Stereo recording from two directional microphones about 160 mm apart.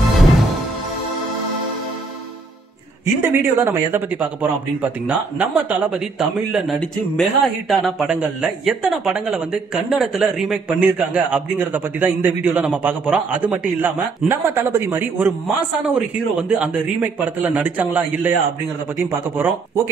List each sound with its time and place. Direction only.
0.2 s music: centre (ahead or behind)
3.2 s speech: 15° right (ahead or behind)